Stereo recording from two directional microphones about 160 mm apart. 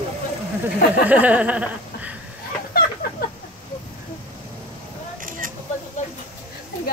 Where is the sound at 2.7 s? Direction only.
70° left (ahead or behind).